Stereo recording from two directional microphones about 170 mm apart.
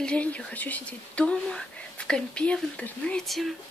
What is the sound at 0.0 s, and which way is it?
Speech, 5° left (ahead or behind).